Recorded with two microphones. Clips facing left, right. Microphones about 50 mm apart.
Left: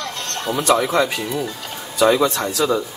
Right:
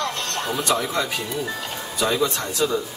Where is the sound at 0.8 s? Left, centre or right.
Left.